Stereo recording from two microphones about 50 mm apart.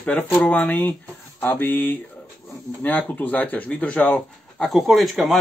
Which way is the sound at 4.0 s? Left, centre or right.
Centre.